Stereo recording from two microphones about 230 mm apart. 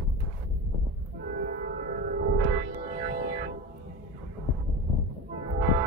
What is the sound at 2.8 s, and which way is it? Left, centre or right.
Music, right.